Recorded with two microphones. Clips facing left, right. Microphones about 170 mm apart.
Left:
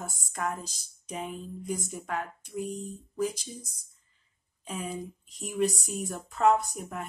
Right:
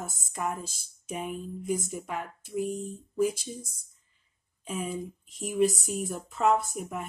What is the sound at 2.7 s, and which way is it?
Speech, 50° right (ahead or behind).